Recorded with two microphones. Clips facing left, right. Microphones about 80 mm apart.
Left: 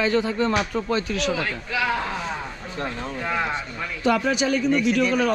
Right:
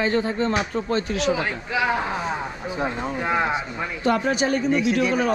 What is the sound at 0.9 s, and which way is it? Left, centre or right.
Speech, right.